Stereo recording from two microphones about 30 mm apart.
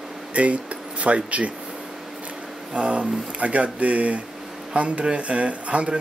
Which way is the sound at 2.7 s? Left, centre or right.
Right.